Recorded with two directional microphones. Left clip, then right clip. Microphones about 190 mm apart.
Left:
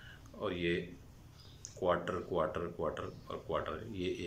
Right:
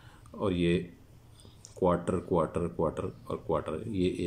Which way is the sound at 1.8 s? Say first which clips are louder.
Right 5 dB; 25° right (ahead or behind).